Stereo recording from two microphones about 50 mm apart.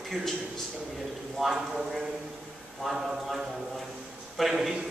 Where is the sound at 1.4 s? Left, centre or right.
Centre.